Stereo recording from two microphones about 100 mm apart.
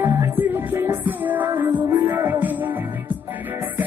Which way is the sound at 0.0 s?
20° right (ahead or behind).